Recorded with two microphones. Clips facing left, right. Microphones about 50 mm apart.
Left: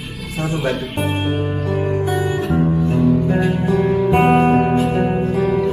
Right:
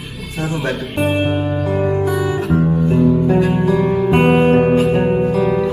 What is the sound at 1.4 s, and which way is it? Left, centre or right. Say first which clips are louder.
Music: right 3 dB; right.